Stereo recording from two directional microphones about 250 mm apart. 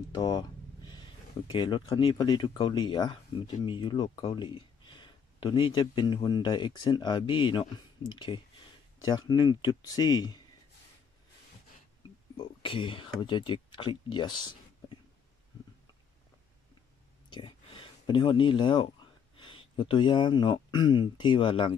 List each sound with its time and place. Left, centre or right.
0.1 s a sound: centre
1.5 s speech: centre
12.4 s speech: centre
17.3 s speech: centre